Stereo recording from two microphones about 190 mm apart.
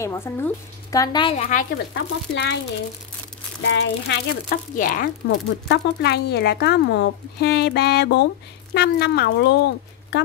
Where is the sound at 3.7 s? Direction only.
65° left (ahead or behind).